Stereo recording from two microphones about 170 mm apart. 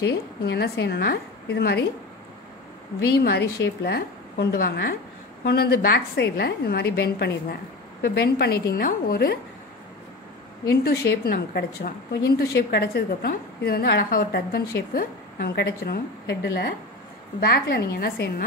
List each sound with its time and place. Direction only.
0.0 s a woman's voice: 75° left (ahead or behind)
3.0 s a woman's voice: 75° left (ahead or behind)
10.7 s a woman's voice: 65° left (ahead or behind)